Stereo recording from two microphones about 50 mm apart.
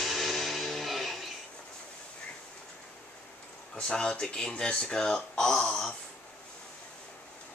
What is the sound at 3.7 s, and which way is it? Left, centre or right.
Speech, centre.